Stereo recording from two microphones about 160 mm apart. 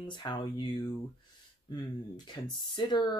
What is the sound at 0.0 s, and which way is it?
Speech, 30° left (ahead or behind).